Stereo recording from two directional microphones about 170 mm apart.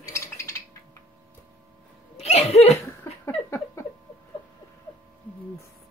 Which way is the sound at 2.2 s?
40° left (ahead or behind).